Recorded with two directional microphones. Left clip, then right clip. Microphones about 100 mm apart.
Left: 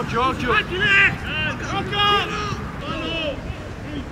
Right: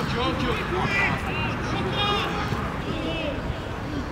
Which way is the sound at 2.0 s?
30° left (ahead or behind).